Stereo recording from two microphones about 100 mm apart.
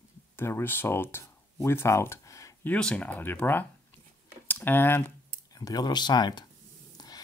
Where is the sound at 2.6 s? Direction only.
10° left (ahead or behind).